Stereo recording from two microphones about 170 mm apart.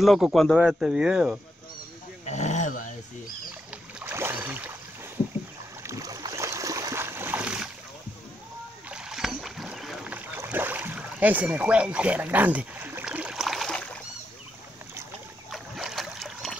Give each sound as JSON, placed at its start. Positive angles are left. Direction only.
{"t": 0.0, "sound": "speech", "side_deg": 0}
{"t": 2.2, "sound": "speech", "side_deg": 45}
{"t": 4.0, "sound": "boat", "side_deg": -15}
{"t": 5.9, "sound": "a sound", "side_deg": -20}
{"t": 8.9, "sound": "boat", "side_deg": 0}
{"t": 15.5, "sound": "boat", "side_deg": 0}